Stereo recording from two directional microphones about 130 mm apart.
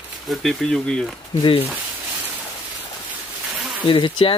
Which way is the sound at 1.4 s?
45° left (ahead or behind).